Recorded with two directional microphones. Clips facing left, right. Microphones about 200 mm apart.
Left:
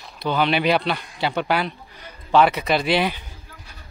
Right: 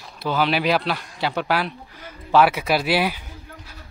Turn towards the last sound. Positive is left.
turn(degrees=-5)  # may be behind; listen again after turning